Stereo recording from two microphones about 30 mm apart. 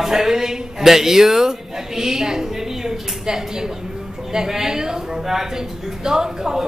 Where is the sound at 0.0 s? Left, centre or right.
Centre.